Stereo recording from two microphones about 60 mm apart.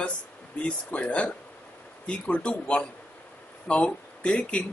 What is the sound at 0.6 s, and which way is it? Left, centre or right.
Speech, centre.